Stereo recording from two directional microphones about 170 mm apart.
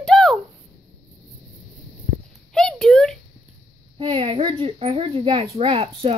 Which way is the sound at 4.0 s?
30° right (ahead or behind).